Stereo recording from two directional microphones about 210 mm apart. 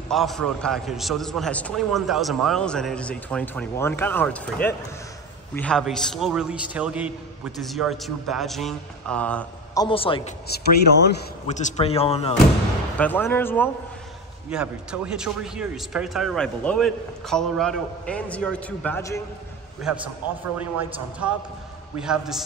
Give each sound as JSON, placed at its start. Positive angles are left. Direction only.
{"t": 0.1, "sound": "a man's voice", "side_deg": 0}
{"t": 9.8, "sound": "speech", "side_deg": 25}
{"t": 10.9, "sound": "a man's voice", "side_deg": 55}
{"t": 11.4, "sound": "speech", "side_deg": 35}
{"t": 12.9, "sound": "speech", "side_deg": 10}
{"t": 14.5, "sound": "a man's voice", "side_deg": -5}
{"t": 19.9, "sound": "a man's voice", "side_deg": -5}